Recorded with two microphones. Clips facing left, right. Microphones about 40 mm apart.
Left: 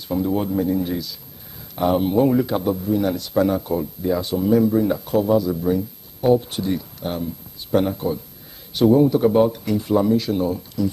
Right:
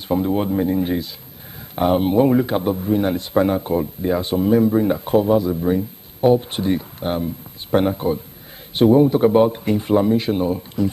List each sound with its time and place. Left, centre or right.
0.1 s speech: right